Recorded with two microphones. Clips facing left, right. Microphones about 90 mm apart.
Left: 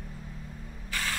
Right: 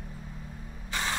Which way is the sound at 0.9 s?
20° right (ahead or behind).